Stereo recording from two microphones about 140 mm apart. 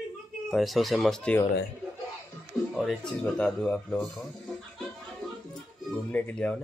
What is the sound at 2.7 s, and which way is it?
Speech, 5° left (ahead or behind).